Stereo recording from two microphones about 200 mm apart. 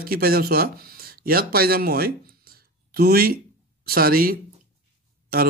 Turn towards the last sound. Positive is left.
turn(degrees=-50)  # may be behind; listen again after turning